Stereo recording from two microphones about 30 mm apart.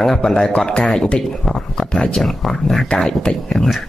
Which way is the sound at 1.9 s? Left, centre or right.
Left.